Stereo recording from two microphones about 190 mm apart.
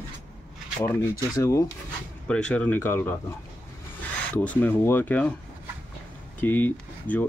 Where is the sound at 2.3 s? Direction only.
5° left (ahead or behind).